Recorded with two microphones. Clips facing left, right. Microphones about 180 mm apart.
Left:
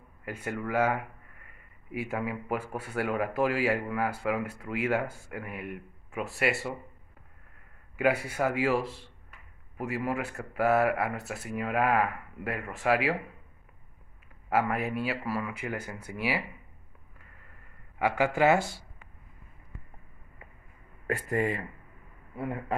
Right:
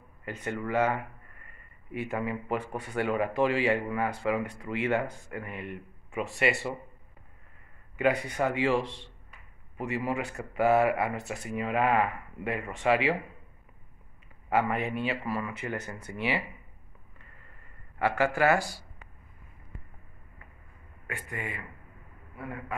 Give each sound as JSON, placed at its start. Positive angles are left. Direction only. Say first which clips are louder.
{"t": 0.2, "sound": "speech", "louder": "even", "side_deg": 5}
{"t": 7.9, "sound": "speech", "louder": "even", "side_deg": 5}
{"t": 14.5, "sound": "speech", "louder": "even", "side_deg": 5}
{"t": 17.9, "sound": "speech", "louder": "even", "side_deg": 15}
{"t": 21.1, "sound": "speech", "louder": "left 10 dB", "side_deg": 40}
{"t": 22.7, "sound": "a man's voice", "louder": "left 5 dB", "side_deg": 35}